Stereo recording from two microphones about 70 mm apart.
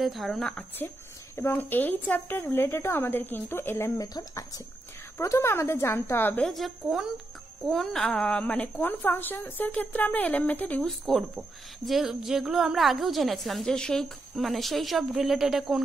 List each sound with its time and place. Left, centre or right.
0.0 s a woman's voice: centre
0.7 s a woman's voice: left
4.0 s speech: left
5.2 s a woman's voice: left
6.4 s a woman's voice: centre
7.7 s speech: centre; by 10.8 s left
10.8 s a woman's voice: centre